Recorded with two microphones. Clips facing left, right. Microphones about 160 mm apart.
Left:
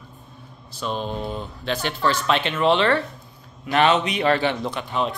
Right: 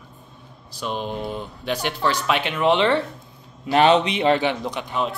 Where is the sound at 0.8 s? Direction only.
10° right (ahead or behind).